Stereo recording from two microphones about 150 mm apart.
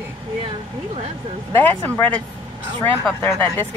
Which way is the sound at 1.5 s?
15° left (ahead or behind).